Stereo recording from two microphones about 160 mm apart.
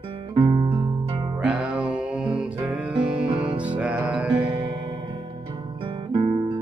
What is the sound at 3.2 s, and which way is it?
Music, 40° right (ahead or behind).